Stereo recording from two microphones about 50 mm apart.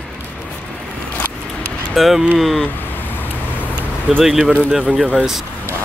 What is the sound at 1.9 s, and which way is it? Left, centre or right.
Speech, centre.